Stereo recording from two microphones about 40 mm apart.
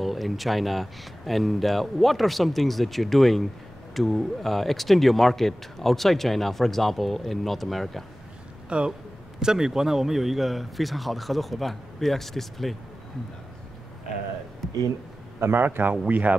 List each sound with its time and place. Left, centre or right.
0.0 s speech: centre
8.6 s speech: right
9.4 s speech: centre
15.4 s a man's voice: right
16.1 s speech: right